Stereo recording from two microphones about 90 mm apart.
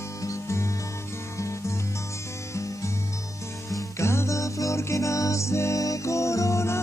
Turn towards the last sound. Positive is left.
turn(degrees=35)  # may be behind; listen again after turning